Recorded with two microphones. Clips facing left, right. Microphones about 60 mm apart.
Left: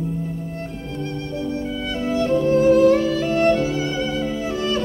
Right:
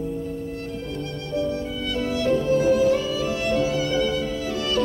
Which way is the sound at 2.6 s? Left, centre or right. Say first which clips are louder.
Left 5 dB; left.